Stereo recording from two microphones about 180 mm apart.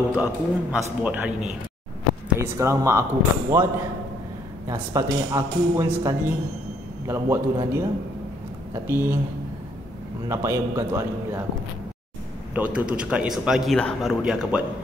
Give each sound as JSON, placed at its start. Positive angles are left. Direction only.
{"t": 0.1, "sound": "speech", "side_deg": -5}
{"t": 4.6, "sound": "speech", "side_deg": -20}
{"t": 8.8, "sound": "speech", "side_deg": -15}
{"t": 10.2, "sound": "speech", "side_deg": -15}
{"t": 12.5, "sound": "speech", "side_deg": -5}